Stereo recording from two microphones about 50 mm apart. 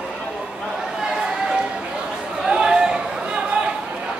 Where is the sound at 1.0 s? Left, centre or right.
Centre.